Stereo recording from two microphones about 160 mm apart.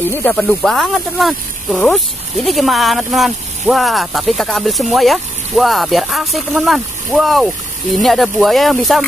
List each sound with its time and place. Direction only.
0.1 s speech: 10° left (ahead or behind)